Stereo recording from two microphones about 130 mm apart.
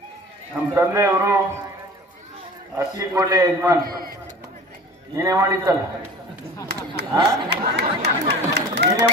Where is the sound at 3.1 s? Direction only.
30° right (ahead or behind).